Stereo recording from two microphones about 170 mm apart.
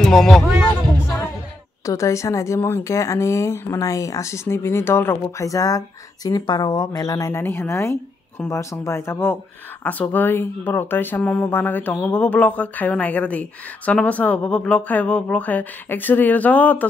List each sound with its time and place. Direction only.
0.0 s speech: 5° left (ahead or behind)
1.9 s a woman's voice: 20° left (ahead or behind)